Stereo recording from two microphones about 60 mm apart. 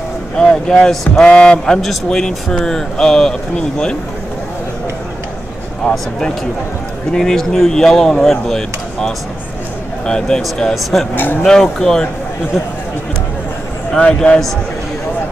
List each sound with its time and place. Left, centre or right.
0.4 s speech: centre
1.8 s speech: centre
5.9 s speech: centre
13.9 s speech: centre